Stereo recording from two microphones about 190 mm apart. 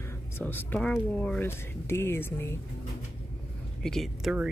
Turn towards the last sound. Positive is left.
turn(degrees=5)  # may be behind; listen again after turning